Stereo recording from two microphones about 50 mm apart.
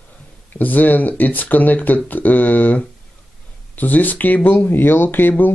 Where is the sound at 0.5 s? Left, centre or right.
Left.